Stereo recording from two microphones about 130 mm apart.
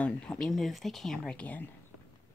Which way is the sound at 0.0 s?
10° left (ahead or behind).